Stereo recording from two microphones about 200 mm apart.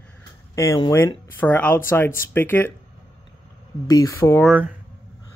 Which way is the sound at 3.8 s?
15° left (ahead or behind).